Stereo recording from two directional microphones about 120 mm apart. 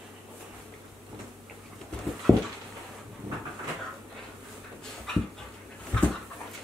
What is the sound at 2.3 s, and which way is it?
Dog, 20° left (ahead or behind).